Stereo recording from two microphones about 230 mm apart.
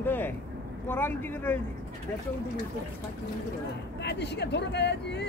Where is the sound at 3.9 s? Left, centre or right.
Left.